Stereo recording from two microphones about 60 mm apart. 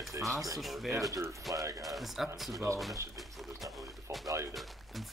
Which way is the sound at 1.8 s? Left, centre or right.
Centre.